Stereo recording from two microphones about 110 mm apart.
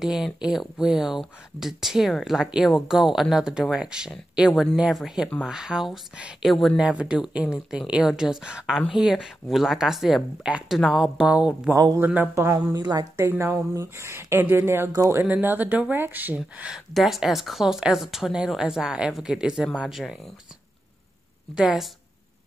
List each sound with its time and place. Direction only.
0.0 s speech: 5° right (ahead or behind)
11.7 s speech: 30° right (ahead or behind)
12.0 s speech: 15° right (ahead or behind)
12.5 s speech: 35° right (ahead or behind)
13.1 s speech: 25° right (ahead or behind); by 20.2 s 5° right (ahead or behind)
21.5 s speech: 5° right (ahead or behind)